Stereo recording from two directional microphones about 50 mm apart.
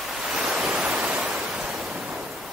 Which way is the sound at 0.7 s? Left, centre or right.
Centre.